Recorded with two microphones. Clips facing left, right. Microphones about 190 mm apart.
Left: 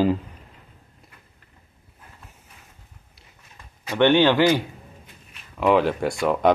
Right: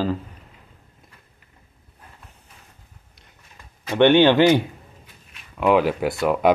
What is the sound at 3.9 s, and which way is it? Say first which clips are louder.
Speech: right 3 dB; 15° right (ahead or behind).